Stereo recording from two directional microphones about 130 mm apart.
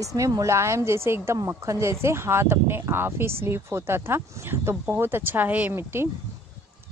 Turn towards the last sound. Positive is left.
turn(degrees=-20)  # may be behind; listen again after turning